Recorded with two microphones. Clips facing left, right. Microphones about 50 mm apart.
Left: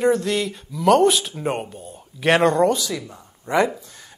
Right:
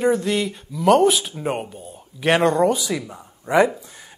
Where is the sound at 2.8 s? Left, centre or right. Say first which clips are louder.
Right 2 dB; centre.